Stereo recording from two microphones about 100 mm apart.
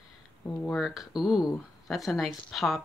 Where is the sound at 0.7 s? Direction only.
5° right (ahead or behind).